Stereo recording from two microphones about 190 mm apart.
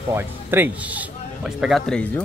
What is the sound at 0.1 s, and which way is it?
A man's voice, 10° right (ahead or behind).